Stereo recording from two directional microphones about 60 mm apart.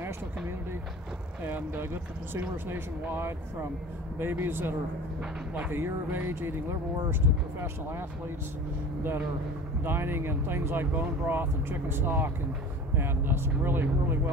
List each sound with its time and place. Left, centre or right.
1.4 s speech: right
9.8 s speech: right